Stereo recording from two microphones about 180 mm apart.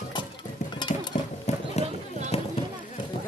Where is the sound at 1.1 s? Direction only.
40° left (ahead or behind).